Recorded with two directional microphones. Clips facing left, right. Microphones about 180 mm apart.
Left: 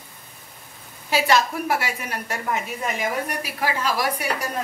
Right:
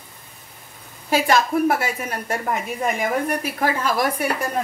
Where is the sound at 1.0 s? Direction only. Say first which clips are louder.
Right 2 dB; 50° right (ahead or behind).